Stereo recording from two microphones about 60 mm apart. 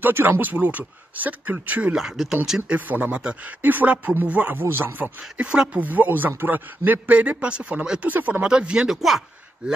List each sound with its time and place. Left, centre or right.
0.0 s a man's voice: right
2.0 s speech: centre
2.7 s a man's voice: right
5.4 s a man's voice: centre
5.9 s a man's voice: right
8.1 s a man's voice: right
8.4 s speech: centre
8.9 s speech: centre